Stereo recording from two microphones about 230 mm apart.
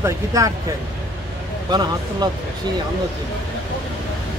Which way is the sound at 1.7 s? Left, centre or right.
Centre.